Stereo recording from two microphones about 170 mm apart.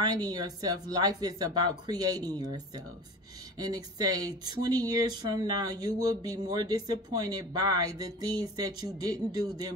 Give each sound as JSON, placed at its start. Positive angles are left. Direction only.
{"t": 0.0, "sound": "speech", "side_deg": -25}